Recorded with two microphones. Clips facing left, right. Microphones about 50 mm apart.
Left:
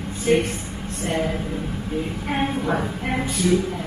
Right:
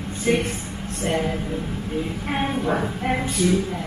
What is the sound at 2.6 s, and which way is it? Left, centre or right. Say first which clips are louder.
Speech: right 1 dB; centre.